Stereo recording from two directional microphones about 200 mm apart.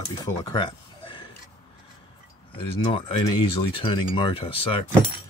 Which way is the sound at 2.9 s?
25° left (ahead or behind).